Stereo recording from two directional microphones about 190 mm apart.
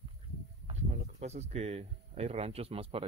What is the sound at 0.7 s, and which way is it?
Speech, 35° right (ahead or behind).